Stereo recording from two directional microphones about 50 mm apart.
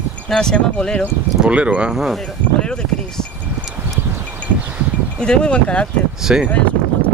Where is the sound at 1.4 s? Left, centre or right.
Right.